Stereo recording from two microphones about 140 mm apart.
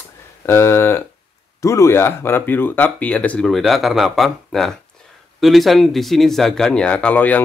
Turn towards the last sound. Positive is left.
turn(degrees=10)  # may be behind; listen again after turning